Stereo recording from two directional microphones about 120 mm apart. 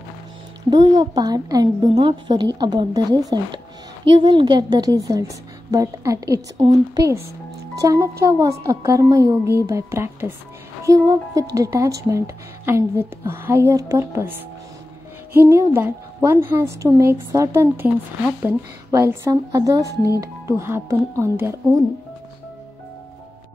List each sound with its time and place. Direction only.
0.7 s a woman's voice: 35° right (ahead or behind)
4.0 s a woman's voice: 45° right (ahead or behind); by 14.3 s 20° right (ahead or behind)
15.3 s speech: 20° right (ahead or behind)